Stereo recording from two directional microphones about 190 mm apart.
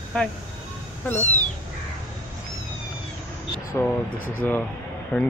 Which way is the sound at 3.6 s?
10° left (ahead or behind).